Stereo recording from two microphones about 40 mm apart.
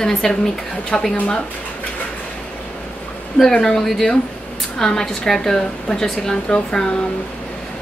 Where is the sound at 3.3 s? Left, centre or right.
Centre.